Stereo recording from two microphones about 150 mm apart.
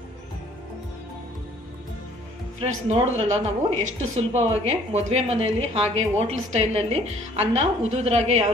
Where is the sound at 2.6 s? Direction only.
45° right (ahead or behind).